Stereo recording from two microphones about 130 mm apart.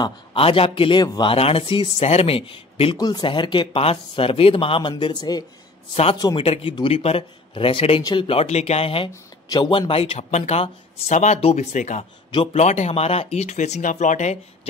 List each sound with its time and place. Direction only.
0.0 s speech: 45° left (ahead or behind)
1.0 s speech: 30° left (ahead or behind)
1.3 s speech: 45° left (ahead or behind)
6.3 s speech: 45° left (ahead or behind)
9.1 s speech: 35° left (ahead or behind); by 14.7 s 60° left (ahead or behind)